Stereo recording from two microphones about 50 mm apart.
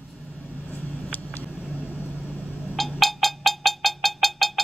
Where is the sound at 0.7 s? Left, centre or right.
Left.